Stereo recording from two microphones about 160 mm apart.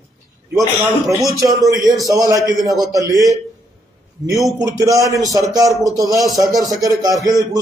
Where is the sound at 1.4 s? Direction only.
20° right (ahead or behind).